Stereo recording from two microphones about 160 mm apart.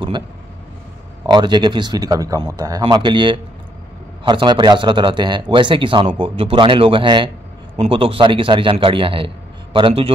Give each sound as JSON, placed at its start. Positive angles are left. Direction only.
{"t": 1.2, "sound": "speech", "side_deg": -30}